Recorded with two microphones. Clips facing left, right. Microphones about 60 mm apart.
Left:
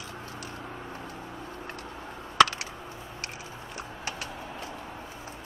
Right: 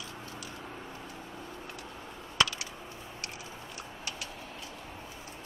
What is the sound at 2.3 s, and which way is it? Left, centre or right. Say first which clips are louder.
Computer keyboard: left 8 dB; left.